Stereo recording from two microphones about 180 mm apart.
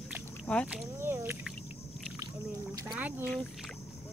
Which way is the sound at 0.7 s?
10° right (ahead or behind).